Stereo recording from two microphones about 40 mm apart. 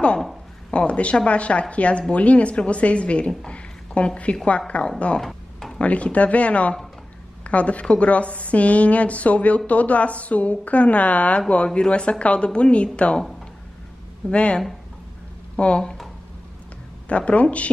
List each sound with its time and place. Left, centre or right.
0.7 s a woman's voice: left
3.5 s a sound: left
4.6 s a woman's voice: left
5.2 s a sound: centre
5.8 s a woman's voice: left
14.3 s a woman's voice: left
17.1 s a woman's voice: left